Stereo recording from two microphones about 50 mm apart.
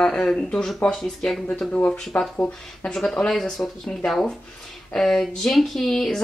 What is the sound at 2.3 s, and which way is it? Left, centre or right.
Speech, left.